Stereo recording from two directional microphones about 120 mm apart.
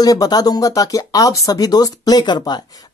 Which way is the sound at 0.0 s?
30° left (ahead or behind).